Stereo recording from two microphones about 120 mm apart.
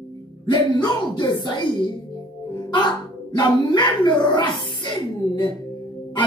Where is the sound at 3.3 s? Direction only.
40° left (ahead or behind).